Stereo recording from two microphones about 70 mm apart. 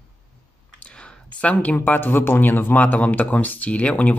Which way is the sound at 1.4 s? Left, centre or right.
Centre.